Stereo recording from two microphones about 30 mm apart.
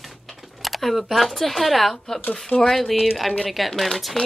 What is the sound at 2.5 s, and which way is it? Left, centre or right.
Speech, left.